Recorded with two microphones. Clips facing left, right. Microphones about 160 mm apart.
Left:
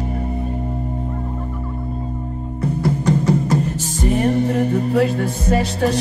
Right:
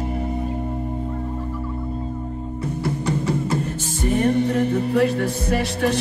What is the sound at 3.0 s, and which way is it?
Music, 35° left (ahead or behind).